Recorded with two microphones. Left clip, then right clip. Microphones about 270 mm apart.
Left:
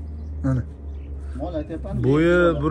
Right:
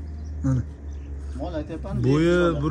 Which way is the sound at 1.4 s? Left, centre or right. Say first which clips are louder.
Left 2 dB; right.